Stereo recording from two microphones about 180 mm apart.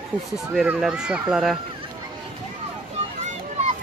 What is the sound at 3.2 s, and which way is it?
Children playing, 40° right (ahead or behind).